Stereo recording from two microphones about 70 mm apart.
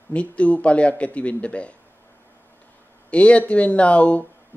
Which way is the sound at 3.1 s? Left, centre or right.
Centre.